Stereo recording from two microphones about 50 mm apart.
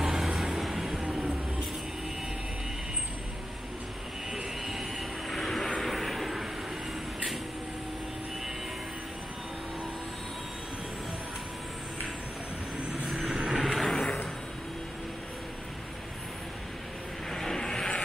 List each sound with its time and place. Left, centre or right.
0.0 s vehicle: centre
1.0 s a sound: right
4.6 s vehicle: centre
13.0 s vehicle: centre
13.7 s vehicle: centre
17.3 s vehicle: centre